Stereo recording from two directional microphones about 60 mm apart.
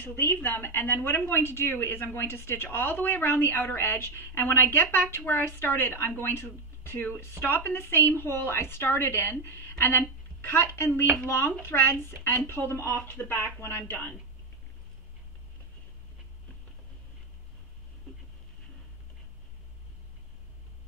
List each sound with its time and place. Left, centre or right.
0.0 s a woman's voice: left